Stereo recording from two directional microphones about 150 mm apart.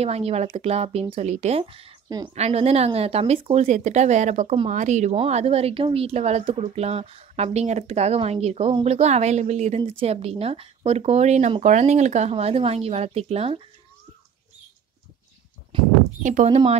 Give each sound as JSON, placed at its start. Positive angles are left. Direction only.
{"t": 0.0, "sound": "a woman's voice", "side_deg": -40}
{"t": 2.0, "sound": "a woman's voice", "side_deg": -25}
{"t": 2.3, "sound": "a woman's voice", "side_deg": -45}
{"t": 15.7, "sound": "speech", "side_deg": -35}
{"t": 16.2, "sound": "speech", "side_deg": -60}
{"t": 16.4, "sound": "speech", "side_deg": -40}